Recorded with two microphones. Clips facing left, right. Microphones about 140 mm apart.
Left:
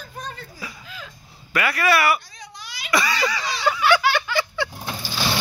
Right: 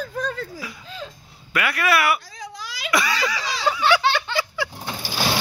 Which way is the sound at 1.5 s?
Centre (ahead or behind).